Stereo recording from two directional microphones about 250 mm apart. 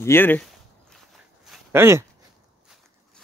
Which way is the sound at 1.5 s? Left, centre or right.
Centre.